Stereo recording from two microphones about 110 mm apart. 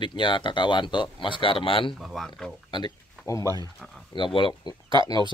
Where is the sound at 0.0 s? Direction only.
45° left (ahead or behind).